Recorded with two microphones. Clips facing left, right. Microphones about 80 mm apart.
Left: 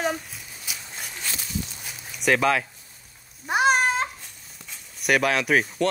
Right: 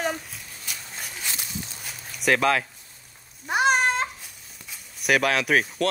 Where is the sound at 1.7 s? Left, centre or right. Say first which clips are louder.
Even; centre.